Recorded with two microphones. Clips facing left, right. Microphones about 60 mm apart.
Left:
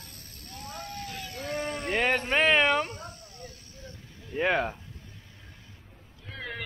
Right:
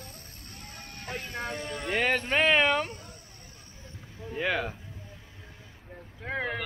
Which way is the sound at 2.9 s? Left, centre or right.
Left.